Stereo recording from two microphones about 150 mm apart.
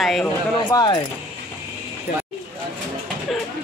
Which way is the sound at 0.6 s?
30° left (ahead or behind).